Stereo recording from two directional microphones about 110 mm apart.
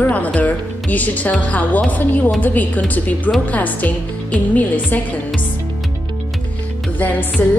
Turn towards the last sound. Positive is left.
turn(degrees=15)  # may be behind; listen again after turning